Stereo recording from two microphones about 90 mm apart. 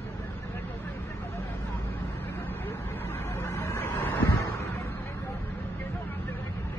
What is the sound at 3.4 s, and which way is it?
Vehicle, 35° left (ahead or behind).